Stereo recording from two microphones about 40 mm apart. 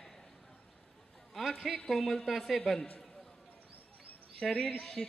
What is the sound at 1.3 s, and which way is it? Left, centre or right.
A man's voice, centre.